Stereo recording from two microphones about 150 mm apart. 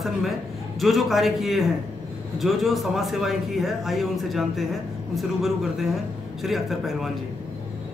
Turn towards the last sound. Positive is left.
turn(degrees=0)  # may be behind; listen again after turning